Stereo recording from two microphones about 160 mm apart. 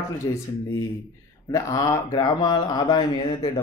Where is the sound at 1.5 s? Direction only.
25° left (ahead or behind).